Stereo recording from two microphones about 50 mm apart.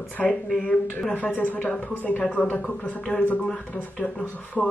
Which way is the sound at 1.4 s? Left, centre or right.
Left.